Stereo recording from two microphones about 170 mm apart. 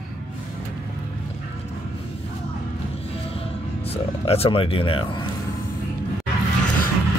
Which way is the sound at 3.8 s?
35° left (ahead or behind).